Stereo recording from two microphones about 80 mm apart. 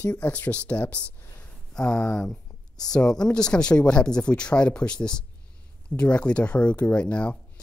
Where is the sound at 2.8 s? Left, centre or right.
Centre.